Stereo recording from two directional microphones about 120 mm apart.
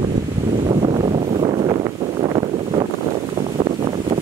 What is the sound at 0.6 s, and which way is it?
Wind noise, 50° right (ahead or behind).